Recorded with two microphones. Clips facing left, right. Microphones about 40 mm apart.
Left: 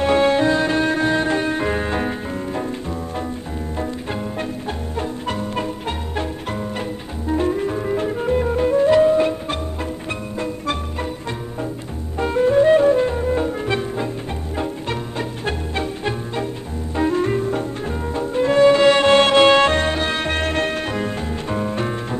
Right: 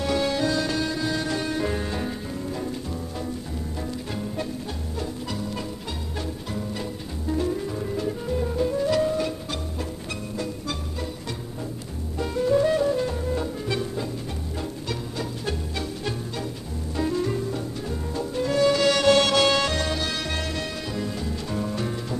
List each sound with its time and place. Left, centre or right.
0.0 s music: left
12.2 s music: left